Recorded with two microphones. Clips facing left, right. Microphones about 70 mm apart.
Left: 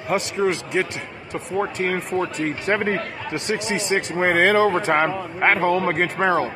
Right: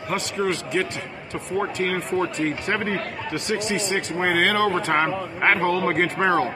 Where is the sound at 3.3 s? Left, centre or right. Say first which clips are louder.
Left 1 dB; left.